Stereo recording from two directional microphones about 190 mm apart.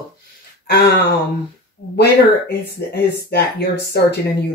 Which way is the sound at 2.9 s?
60° left (ahead or behind).